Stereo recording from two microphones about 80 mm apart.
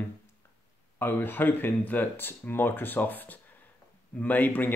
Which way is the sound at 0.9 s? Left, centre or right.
Left.